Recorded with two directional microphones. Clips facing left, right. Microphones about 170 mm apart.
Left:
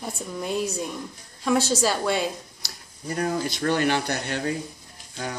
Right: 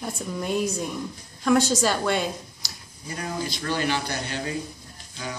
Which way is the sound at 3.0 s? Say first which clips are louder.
Left 5 dB; 50° left (ahead or behind).